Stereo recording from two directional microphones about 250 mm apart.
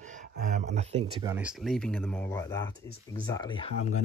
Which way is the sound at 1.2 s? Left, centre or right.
Centre.